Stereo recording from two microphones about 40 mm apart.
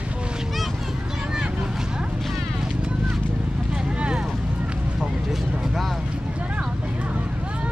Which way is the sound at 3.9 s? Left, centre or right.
Right.